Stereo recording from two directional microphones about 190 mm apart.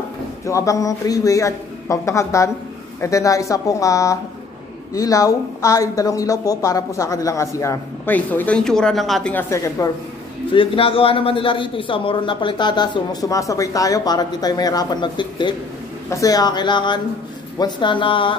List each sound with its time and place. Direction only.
0.5 s speech: 15° left (ahead or behind)
10.5 s a man's voice: 30° left (ahead or behind)